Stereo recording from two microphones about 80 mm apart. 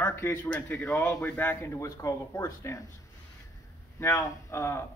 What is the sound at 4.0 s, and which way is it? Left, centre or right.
Speech, left.